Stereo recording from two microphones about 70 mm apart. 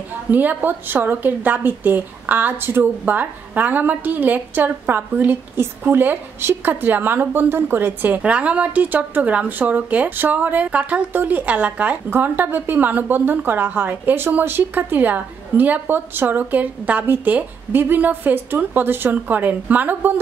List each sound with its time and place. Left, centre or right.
0.3 s a woman's voice: right
8.2 s a woman's voice: centre